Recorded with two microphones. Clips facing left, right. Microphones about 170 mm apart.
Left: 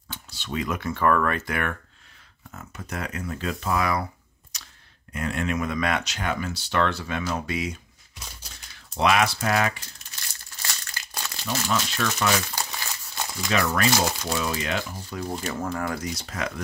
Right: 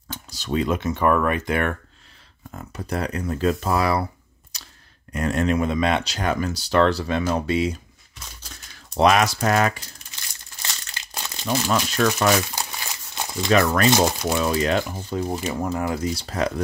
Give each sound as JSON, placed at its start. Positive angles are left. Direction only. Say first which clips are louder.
{"t": 0.1, "sound": "speech", "louder": "right 6 dB", "side_deg": -40}
{"t": 2.5, "sound": "speech", "louder": "right 7 dB", "side_deg": -35}
{"t": 4.5, "sound": "camera", "louder": "right 2 dB", "side_deg": -35}
{"t": 5.1, "sound": "speech", "louder": "right 6 dB", "side_deg": -40}
{"t": 8.9, "sound": "speech", "louder": "right 4 dB", "side_deg": -40}
{"t": 10.6, "sound": "crumpling", "louder": "right 1 dB", "side_deg": -20}
{"t": 11.4, "sound": "speech", "louder": "right 5 dB", "side_deg": -40}
{"t": 12.5, "sound": "crumpling", "louder": "right 1 dB", "side_deg": -20}
{"t": 13.5, "sound": "speech", "louder": "right 6 dB", "side_deg": -45}
{"t": 15.3, "sound": "speech", "louder": "right 4 dB", "side_deg": -15}